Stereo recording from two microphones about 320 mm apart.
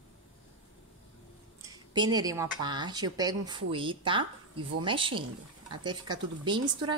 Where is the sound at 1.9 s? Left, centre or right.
Centre.